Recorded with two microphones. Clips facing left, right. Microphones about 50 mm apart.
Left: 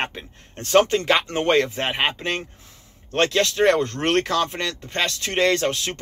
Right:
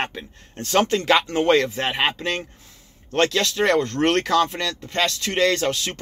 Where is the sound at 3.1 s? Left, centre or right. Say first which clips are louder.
Even; left.